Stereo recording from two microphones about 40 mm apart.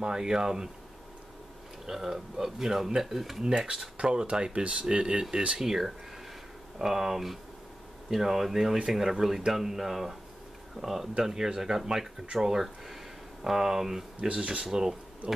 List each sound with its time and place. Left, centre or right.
0.0 s speech: centre
1.9 s speech: centre
4.0 s speech: right
5.6 s speech: centre
14.2 s speech: right
14.6 s speech: centre